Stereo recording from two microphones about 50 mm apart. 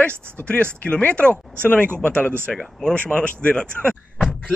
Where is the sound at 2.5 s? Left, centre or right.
Centre.